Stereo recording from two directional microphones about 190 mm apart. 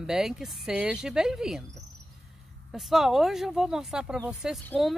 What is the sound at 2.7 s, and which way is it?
Speech, centre (ahead or behind).